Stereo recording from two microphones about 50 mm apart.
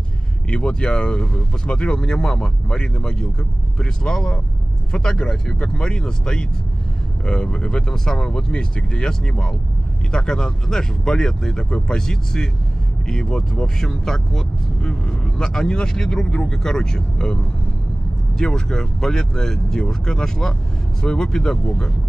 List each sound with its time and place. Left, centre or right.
0.5 s speech: left
18.4 s speech: centre